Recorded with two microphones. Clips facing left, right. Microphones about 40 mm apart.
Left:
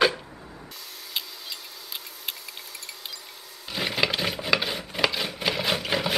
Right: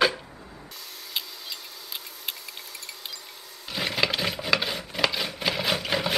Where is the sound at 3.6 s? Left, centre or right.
Centre.